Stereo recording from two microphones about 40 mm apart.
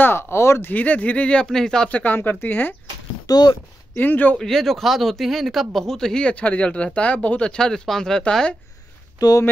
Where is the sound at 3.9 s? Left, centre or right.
Left.